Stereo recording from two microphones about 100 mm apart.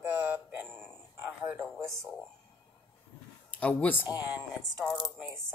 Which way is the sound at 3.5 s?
15° left (ahead or behind).